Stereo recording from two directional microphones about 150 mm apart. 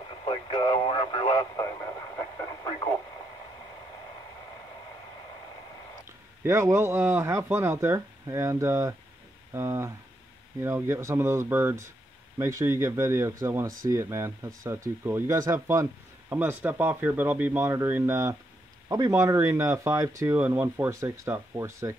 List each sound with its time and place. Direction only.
0.2 s speech: 30° left (ahead or behind)
1.6 s radio: 20° left (ahead or behind)
6.4 s speech: 20° right (ahead or behind)